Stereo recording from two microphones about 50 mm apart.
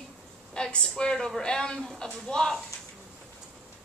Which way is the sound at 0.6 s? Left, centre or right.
Centre.